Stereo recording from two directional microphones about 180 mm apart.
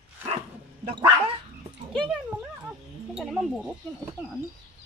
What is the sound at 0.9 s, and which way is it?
Dog, 30° right (ahead or behind).